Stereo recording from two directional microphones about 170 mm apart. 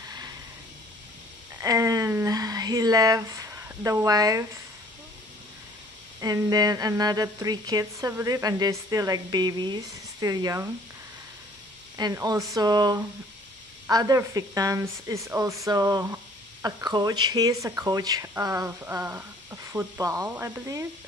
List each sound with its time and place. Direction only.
1.6 s speech: 20° right (ahead or behind)
6.2 s a woman's voice: 20° right (ahead or behind)
12.0 s a woman's voice: 20° right (ahead or behind)